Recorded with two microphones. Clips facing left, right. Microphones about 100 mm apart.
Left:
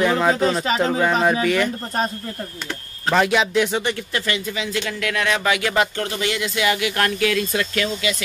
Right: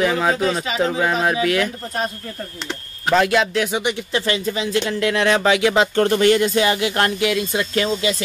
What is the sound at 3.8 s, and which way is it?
Speech, 15° right (ahead or behind).